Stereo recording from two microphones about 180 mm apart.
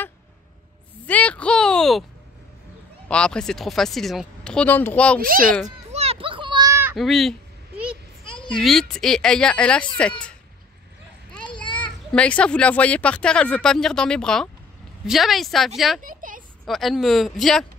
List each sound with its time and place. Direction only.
1.0 s a sound: 10° left (ahead or behind)
3.1 s speech: 5° left (ahead or behind)
5.2 s a child's voice: 50° right (ahead or behind)
5.9 s children playing: 35° right (ahead or behind); by 7.0 s 15° right (ahead or behind)
7.0 s a sound: centre (ahead or behind)
8.4 s speech: 5° left (ahead or behind)
11.4 s children playing: 25° left (ahead or behind)
12.1 s speech: 5° left (ahead or behind)
16.0 s a sound: 50° right (ahead or behind)
16.6 s speech: centre (ahead or behind)